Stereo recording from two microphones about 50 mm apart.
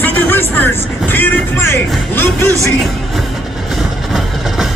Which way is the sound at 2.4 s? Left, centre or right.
Right.